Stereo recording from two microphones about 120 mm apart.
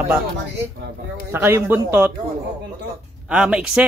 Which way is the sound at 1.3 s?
20° right (ahead or behind).